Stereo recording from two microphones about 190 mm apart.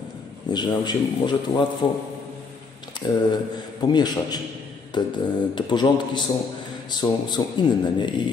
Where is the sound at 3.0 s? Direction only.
20° left (ahead or behind).